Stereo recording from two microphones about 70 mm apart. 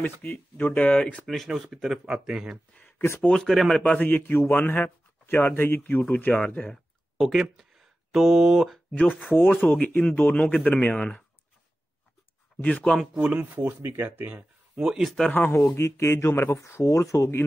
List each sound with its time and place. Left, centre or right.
0.0 s speech: left
1.2 s speech: centre
3.2 s speech: centre
3.9 s speech: left
6.3 s speech: centre
7.2 s speech: centre
8.9 s speech: left
12.9 s speech: centre
13.2 s speech: right
14.8 s speech: centre
15.2 s speech: left
15.7 s speech: left